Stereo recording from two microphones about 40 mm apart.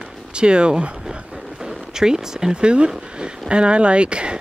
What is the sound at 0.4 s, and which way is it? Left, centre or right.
Speech, right.